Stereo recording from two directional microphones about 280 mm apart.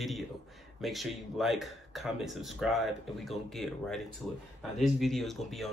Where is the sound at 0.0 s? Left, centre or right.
Centre.